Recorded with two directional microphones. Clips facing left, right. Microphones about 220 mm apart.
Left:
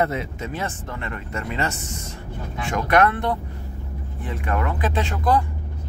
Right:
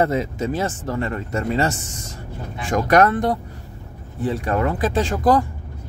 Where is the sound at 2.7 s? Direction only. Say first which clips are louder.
Right 3 dB; 40° right (ahead or behind).